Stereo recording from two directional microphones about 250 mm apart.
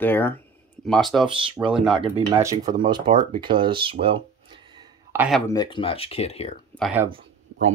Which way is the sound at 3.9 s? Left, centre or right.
Right.